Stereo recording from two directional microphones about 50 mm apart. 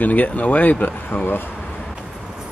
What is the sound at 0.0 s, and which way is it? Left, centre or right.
Speech, left.